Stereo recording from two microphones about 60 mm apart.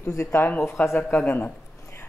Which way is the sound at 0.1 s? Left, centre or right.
Left.